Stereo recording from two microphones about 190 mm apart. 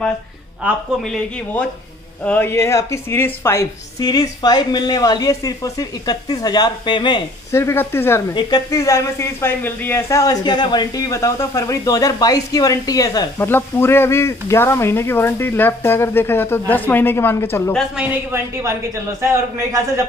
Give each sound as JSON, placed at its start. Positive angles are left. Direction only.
{"t": 0.6, "sound": "speech", "side_deg": -5}
{"t": 2.2, "sound": "a woman's voice", "side_deg": 10}
{"t": 7.5, "sound": "speech", "side_deg": 10}